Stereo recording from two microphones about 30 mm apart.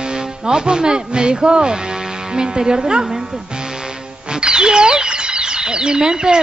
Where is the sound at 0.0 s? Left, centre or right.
Right.